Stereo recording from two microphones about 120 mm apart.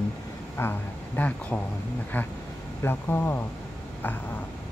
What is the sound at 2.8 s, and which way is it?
Speech, 20° left (ahead or behind).